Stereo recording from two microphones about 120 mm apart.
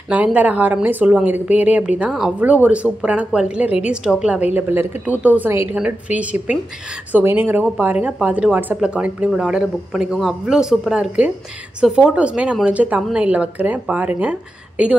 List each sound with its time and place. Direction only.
0.1 s a woman's voice: 10° right (ahead or behind)